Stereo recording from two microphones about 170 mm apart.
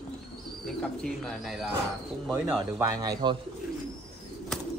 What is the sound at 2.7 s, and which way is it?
Speech, 20° right (ahead or behind).